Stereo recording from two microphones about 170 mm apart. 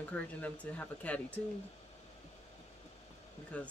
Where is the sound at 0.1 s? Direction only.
10° left (ahead or behind).